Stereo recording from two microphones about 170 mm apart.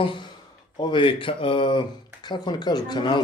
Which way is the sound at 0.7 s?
30° left (ahead or behind).